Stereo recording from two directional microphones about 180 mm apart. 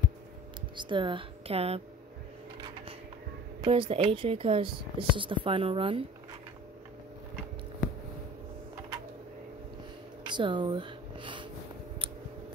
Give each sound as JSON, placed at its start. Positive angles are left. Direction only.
{"t": 0.7, "sound": "speech", "side_deg": -25}
{"t": 3.6, "sound": "speech", "side_deg": -30}
{"t": 10.2, "sound": "a sound", "side_deg": -25}